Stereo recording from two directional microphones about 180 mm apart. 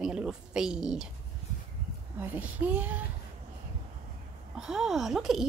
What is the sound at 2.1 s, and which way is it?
Speech, 10° right (ahead or behind).